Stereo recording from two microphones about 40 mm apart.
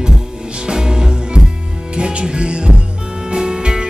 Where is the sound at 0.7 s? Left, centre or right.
Centre.